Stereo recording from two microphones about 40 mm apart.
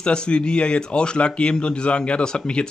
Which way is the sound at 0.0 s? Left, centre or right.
Left.